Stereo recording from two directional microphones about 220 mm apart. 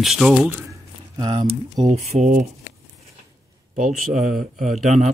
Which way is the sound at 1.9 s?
30° right (ahead or behind).